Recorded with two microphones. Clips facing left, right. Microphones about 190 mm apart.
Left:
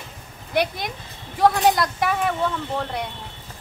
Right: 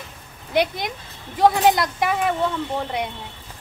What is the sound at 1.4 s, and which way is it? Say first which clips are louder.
Speech: right 1 dB; 15° right (ahead or behind).